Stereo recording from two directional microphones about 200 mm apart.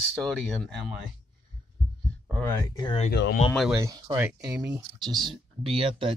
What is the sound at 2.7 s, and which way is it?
Speech, 20° left (ahead or behind).